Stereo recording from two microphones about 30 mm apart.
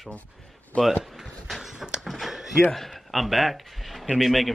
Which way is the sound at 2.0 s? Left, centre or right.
Centre.